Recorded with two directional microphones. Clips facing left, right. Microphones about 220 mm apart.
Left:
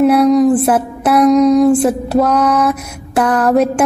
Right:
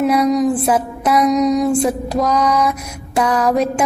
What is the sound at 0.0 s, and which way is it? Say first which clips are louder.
Music: left 5 dB; centre (ahead or behind).